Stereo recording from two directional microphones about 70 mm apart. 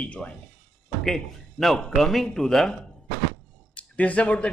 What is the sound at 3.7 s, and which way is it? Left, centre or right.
Speech, centre.